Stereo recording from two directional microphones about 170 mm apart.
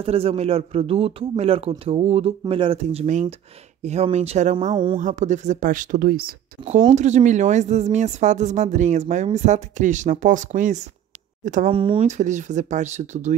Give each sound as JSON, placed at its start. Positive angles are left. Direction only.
{"t": 0.0, "sound": "a man's voice", "side_deg": -35}
{"t": 6.9, "sound": "speech", "side_deg": -45}
{"t": 11.7, "sound": "speech", "side_deg": -30}